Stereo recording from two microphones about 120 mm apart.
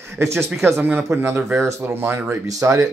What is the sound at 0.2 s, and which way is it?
Speech, 20° right (ahead or behind).